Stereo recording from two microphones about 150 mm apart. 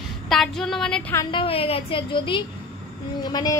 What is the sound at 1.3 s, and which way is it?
A woman's voice, 40° left (ahead or behind).